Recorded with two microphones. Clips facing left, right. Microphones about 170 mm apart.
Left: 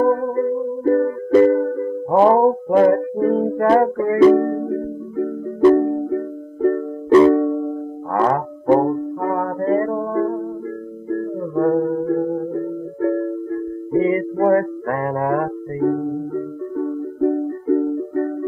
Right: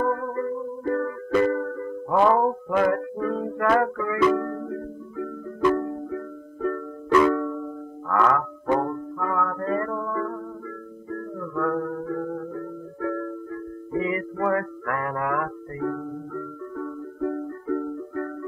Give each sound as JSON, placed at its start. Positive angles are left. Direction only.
{"t": 0.0, "sound": "music", "side_deg": 35}